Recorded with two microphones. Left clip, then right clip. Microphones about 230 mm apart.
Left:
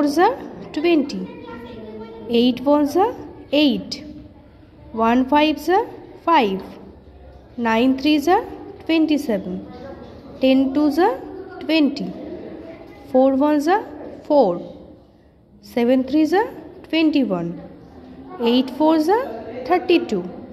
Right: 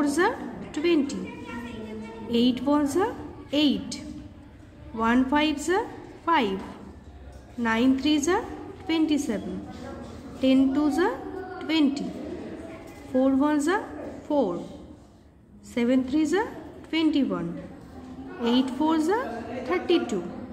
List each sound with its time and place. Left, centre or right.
0.0 s a woman's voice: centre
2.2 s a woman's voice: left
7.6 s a woman's voice: left
10.4 s a woman's voice: left
13.1 s a woman's voice: left
15.7 s a woman's voice: left